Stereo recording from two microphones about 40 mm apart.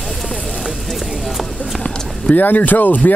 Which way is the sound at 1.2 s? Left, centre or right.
Centre.